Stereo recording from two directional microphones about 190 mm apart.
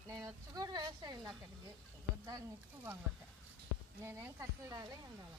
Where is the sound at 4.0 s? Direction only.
15° right (ahead or behind).